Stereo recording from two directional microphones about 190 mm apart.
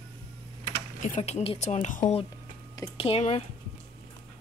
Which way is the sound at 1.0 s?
40° left (ahead or behind).